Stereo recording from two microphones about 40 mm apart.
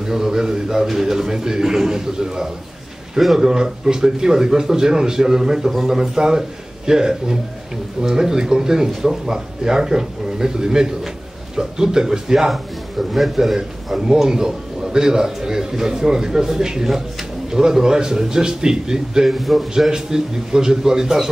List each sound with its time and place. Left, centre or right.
0.0 s a man's voice: centre
3.2 s a man's voice: centre
3.4 s a man's voice: centre
19.2 s a man's voice: centre
19.9 s a man's voice: centre